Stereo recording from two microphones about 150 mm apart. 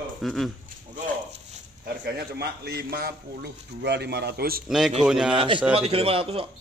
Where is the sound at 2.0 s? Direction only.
90° right.